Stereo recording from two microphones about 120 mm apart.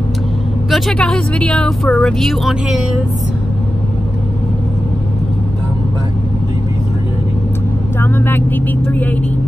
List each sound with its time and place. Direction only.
0.7 s speech: centre (ahead or behind)
8.0 s vehicle: 15° left (ahead or behind)